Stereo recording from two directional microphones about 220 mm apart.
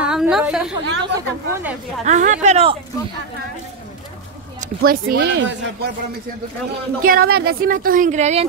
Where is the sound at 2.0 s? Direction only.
30° right (ahead or behind).